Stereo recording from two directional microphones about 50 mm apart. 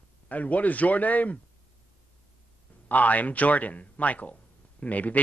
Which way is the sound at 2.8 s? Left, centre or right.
Left.